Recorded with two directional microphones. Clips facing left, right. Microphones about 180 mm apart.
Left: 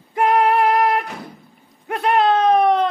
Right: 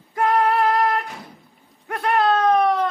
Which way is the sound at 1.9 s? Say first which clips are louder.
Left 3 dB; 20° left (ahead or behind).